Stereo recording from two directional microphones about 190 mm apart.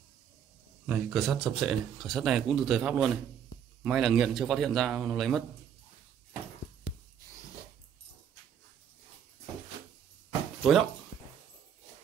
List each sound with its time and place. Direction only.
0.8 s speech: centre (ahead or behind)
10.6 s speech: centre (ahead or behind)
11.1 s dog: 90° left